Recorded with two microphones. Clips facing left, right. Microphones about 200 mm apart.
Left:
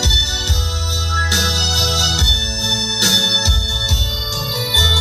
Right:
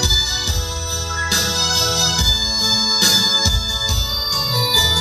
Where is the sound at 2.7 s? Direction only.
30° left (ahead or behind).